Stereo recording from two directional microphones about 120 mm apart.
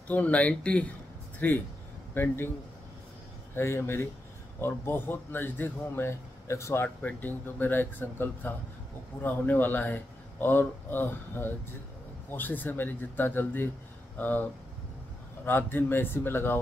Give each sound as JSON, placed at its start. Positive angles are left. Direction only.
{"t": 0.1, "sound": "a man's voice", "side_deg": 10}
{"t": 3.5, "sound": "a man's voice", "side_deg": 20}
{"t": 7.0, "sound": "a man's voice", "side_deg": 15}